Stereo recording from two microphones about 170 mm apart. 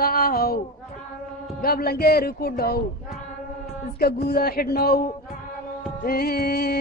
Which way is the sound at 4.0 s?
65° left (ahead or behind).